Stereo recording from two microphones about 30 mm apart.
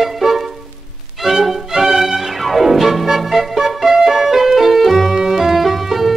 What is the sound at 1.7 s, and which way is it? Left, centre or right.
Music, centre.